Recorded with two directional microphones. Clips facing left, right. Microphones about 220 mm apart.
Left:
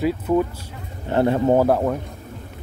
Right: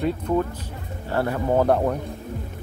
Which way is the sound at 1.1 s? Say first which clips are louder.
Left 6 dB; 25° left (ahead or behind).